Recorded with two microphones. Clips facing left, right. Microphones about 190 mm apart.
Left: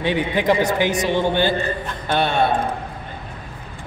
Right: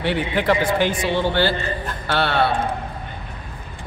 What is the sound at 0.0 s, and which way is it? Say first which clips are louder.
A man's voice: left 1 dB; 15° left (ahead or behind).